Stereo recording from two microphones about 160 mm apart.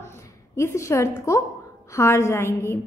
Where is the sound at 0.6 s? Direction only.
15° left (ahead or behind).